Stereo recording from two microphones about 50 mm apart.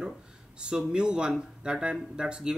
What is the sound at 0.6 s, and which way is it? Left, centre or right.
A man's voice, centre.